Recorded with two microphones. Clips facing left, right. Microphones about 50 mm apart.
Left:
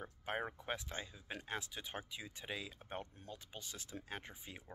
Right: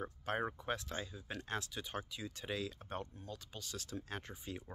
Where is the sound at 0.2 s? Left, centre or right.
Centre.